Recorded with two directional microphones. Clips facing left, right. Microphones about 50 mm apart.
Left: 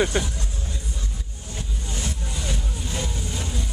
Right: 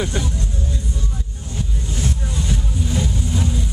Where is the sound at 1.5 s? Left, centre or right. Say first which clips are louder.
Right 6 dB; centre.